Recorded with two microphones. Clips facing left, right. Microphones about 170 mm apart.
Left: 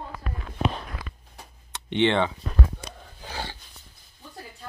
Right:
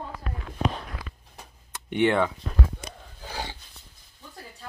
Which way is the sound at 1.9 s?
10° right (ahead or behind).